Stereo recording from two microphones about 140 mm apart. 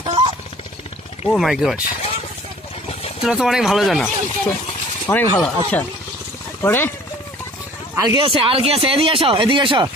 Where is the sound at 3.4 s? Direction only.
5° right (ahead or behind).